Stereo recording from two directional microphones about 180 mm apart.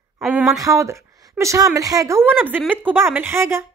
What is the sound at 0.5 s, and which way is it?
Speech, 20° right (ahead or behind).